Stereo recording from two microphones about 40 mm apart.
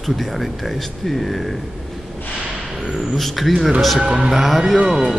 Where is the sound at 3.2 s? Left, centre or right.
Centre.